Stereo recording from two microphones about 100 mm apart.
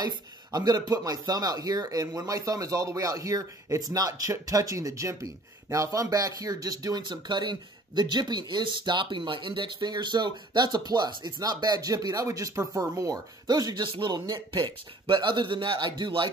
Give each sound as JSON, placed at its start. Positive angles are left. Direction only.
{"t": 0.0, "sound": "speech", "side_deg": -40}